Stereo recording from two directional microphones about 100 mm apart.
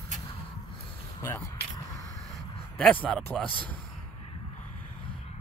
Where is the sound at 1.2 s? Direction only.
30° left (ahead or behind).